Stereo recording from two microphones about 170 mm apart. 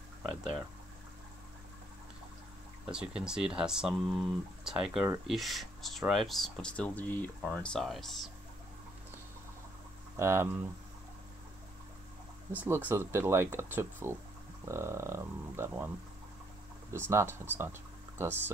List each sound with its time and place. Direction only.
0.2 s a sound: 5° right (ahead or behind)
2.9 s speech: 5° right (ahead or behind)
10.1 s speech: 15° right (ahead or behind)
12.5 s speech: 10° right (ahead or behind)
16.9 s speech: 15° right (ahead or behind)